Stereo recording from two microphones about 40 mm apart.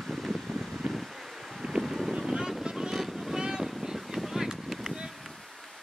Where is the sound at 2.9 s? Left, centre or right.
Centre.